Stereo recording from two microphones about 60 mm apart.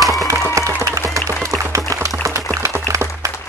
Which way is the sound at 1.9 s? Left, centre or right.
Right.